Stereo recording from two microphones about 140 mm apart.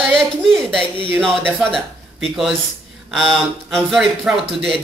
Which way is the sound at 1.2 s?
Centre (ahead or behind).